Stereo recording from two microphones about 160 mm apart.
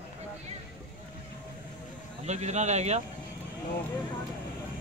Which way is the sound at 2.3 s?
45° right (ahead or behind).